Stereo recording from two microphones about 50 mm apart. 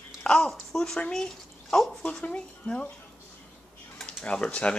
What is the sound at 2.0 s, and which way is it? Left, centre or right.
Speech, left.